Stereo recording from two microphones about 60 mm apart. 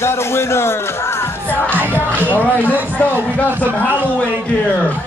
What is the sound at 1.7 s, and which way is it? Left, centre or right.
Music, right.